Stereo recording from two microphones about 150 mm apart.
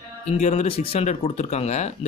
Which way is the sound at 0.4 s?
45° left (ahead or behind).